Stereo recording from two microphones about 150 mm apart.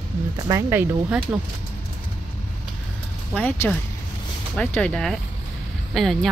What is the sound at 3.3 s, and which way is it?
Speech, 10° left (ahead or behind).